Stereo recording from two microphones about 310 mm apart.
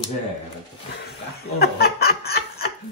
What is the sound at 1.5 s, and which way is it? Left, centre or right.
Chuckle, left.